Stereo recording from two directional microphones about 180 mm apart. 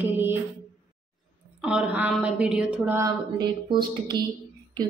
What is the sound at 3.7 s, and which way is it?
Speech, 25° right (ahead or behind).